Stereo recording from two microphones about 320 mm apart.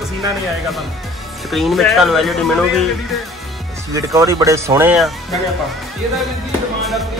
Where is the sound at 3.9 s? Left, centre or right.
Centre.